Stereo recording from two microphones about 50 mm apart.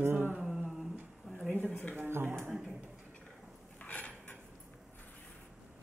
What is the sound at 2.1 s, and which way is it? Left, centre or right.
Speech, right.